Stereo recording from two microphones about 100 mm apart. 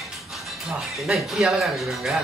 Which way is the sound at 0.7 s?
5° right (ahead or behind).